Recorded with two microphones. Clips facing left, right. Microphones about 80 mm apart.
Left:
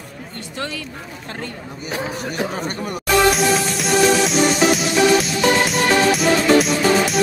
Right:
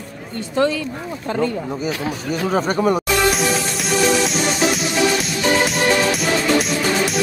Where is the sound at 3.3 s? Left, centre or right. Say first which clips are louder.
Left 2 dB; centre.